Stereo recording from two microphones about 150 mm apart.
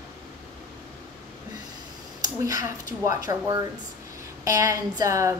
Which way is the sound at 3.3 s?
25° right (ahead or behind).